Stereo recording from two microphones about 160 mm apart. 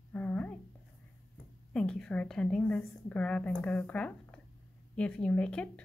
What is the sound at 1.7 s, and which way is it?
A woman's voice, 5° left (ahead or behind).